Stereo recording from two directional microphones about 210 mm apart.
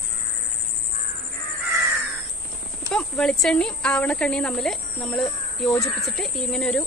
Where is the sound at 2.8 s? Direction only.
5° left (ahead or behind).